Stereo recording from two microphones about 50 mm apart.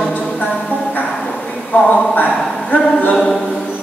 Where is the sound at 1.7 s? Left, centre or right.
Left.